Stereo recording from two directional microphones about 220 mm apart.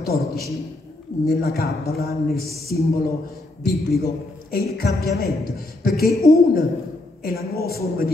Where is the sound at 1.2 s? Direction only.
45° left (ahead or behind).